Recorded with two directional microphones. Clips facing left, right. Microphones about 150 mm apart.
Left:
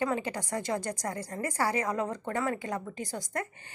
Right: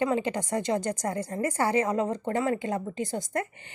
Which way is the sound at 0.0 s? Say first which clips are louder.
Right 4 dB; 25° right (ahead or behind).